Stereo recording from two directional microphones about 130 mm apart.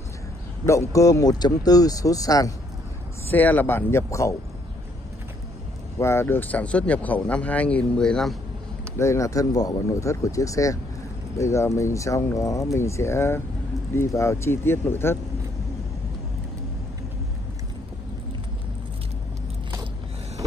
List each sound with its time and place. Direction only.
0.7 s speech: 25° left (ahead or behind)
3.3 s speech: 15° left (ahead or behind)
5.9 s speech: 20° left (ahead or behind); by 8.4 s 5° left (ahead or behind)
8.9 s speech: 20° left (ahead or behind)